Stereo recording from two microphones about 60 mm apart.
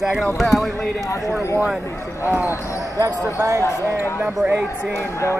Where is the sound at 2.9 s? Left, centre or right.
Right.